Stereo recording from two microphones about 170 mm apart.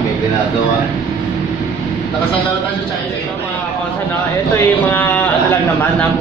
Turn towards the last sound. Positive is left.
turn(degrees=10)  # may be behind; listen again after turning